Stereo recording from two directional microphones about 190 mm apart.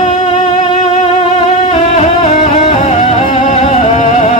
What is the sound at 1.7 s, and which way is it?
Music, 35° left (ahead or behind).